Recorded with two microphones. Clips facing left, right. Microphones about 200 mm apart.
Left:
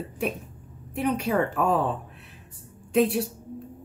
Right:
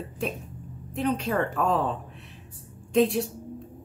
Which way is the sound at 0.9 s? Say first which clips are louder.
Left 1 dB; 10° left (ahead or behind).